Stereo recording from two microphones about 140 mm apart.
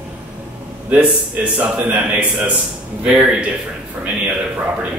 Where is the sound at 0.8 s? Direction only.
10° right (ahead or behind).